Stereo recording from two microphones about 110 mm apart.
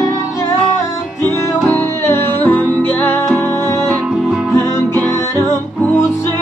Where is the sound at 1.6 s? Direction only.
20° left (ahead or behind).